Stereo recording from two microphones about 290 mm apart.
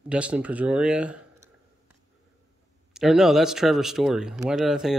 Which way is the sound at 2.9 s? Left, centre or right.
Centre.